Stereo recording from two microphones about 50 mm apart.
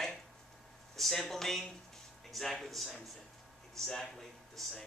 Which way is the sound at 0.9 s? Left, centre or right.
Centre.